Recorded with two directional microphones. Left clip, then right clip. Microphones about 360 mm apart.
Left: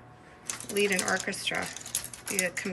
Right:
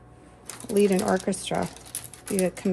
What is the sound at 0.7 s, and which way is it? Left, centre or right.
A woman's voice, centre.